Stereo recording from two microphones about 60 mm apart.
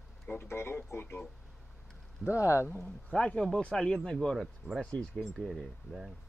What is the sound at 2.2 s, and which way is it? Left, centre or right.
Speech, left.